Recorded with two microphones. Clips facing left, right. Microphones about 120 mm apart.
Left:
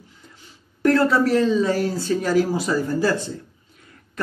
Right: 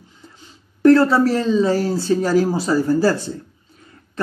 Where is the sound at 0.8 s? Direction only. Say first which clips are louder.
Right 5 dB; 30° right (ahead or behind).